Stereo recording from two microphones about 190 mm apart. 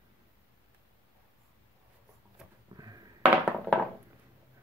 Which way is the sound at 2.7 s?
20° right (ahead or behind).